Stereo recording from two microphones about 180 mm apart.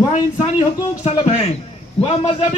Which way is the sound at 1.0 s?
35° left (ahead or behind).